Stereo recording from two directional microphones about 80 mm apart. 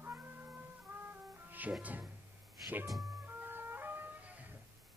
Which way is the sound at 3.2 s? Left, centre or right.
Right.